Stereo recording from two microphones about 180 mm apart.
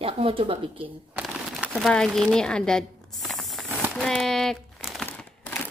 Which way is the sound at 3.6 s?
10° right (ahead or behind).